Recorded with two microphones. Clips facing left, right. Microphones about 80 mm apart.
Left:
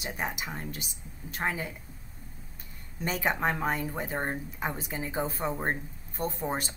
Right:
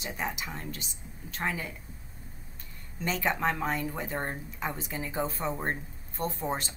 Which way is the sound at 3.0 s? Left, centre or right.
Centre.